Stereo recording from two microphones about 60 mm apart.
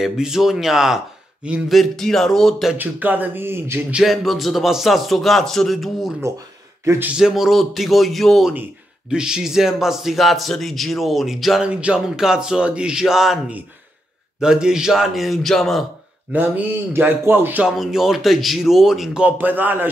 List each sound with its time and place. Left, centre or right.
0.0 s speech: centre
1.7 s speech: centre
2.8 s speech: right
4.0 s speech: centre
7.2 s speech: centre
9.1 s speech: centre
11.6 s music: centre
12.2 s speech: centre
14.4 s speech: centre
16.3 s music: right
16.9 s speech: right
17.6 s speech: centre
19.3 s speech: right